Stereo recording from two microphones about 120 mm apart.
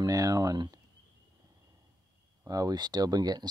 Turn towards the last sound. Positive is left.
turn(degrees=-35)  # may be behind; listen again after turning